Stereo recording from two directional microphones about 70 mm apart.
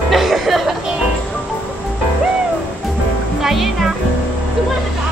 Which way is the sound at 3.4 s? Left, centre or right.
Centre.